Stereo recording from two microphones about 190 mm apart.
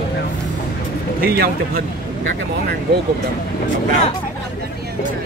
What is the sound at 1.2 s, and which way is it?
Speech, 55° right (ahead or behind).